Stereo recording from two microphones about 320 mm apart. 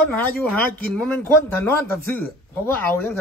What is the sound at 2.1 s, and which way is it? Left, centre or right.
A woman's voice, centre.